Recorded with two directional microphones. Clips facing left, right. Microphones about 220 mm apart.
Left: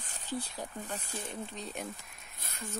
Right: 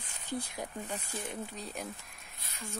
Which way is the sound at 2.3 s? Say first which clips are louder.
Left 5 dB; 50° left (ahead or behind).